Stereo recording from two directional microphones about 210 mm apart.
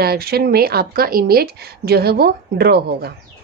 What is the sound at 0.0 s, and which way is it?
A woman's voice, 45° right (ahead or behind).